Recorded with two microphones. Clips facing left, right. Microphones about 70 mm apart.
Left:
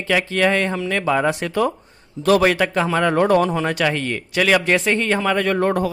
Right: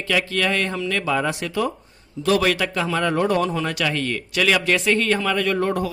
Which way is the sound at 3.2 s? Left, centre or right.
Left.